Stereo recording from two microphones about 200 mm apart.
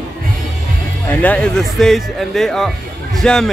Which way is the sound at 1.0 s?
5° left (ahead or behind).